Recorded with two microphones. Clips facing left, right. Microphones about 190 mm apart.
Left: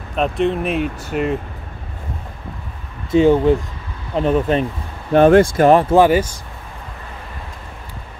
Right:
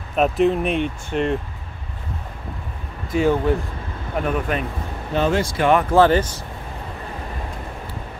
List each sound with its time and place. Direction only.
0.1 s speech: 5° right (ahead or behind)
3.1 s speech: 20° left (ahead or behind)
5.1 s speech: 55° left (ahead or behind)
5.7 s speech: 30° left (ahead or behind)
5.9 s speech: 10° left (ahead or behind)